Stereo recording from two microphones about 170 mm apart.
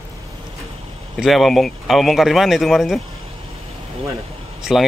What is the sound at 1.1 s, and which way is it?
Speech, centre (ahead or behind).